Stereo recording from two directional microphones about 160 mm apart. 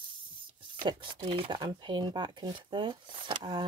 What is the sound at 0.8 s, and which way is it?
Speech, 35° right (ahead or behind).